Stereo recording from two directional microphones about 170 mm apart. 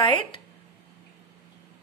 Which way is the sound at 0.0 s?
30° left (ahead or behind).